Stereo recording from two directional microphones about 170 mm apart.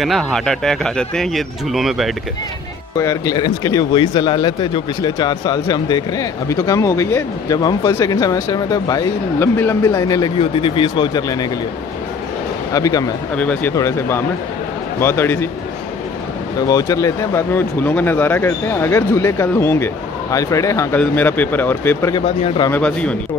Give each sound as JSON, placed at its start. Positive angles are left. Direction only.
{"t": 0.0, "sound": "speech", "side_deg": 0}
{"t": 3.0, "sound": "speech", "side_deg": 20}
{"t": 10.4, "sound": "speech", "side_deg": 35}
{"t": 12.7, "sound": "speech", "side_deg": 20}
{"t": 13.4, "sound": "speech", "side_deg": 10}
{"t": 16.6, "sound": "speech", "side_deg": 20}
{"t": 22.1, "sound": "speech", "side_deg": 35}
{"t": 22.7, "sound": "speech", "side_deg": 5}